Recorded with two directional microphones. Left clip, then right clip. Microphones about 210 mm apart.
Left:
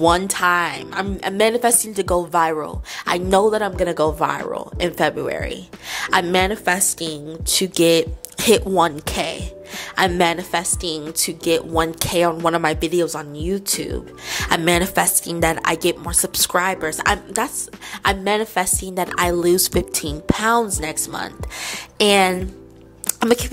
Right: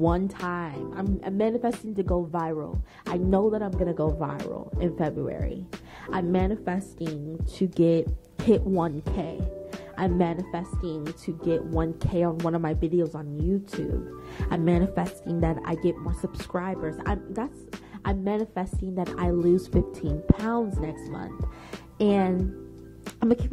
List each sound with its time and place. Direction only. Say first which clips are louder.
0.0 s speech: left 11 dB; 10° left (ahead or behind)
3.2 s speech: left 8 dB; 10° left (ahead or behind)
14.3 s speech: left 10 dB; 10° left (ahead or behind)